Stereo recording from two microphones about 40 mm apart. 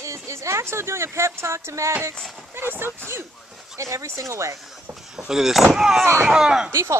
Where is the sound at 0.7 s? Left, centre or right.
Right.